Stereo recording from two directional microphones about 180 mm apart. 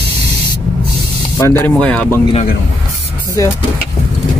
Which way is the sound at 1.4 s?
15° left (ahead or behind).